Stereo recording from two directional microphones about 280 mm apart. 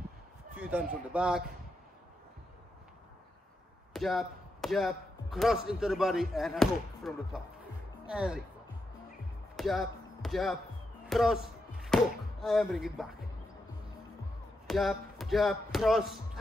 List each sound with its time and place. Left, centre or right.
0.6 s speech: centre
3.9 s speech: centre
9.6 s speech: centre
14.7 s speech: centre